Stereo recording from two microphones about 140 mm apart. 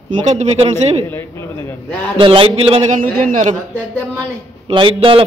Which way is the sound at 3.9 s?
10° left (ahead or behind).